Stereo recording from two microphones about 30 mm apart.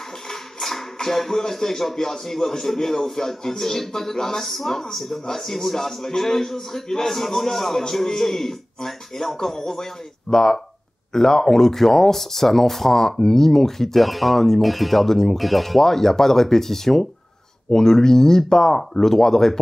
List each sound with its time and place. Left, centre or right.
0.3 s a sound: centre
0.9 s a man's voice: centre
14.0 s speech: centre
15.3 s speech: centre
15.8 s a man's voice: centre